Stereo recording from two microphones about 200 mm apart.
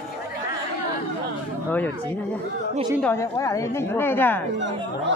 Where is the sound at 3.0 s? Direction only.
15° left (ahead or behind).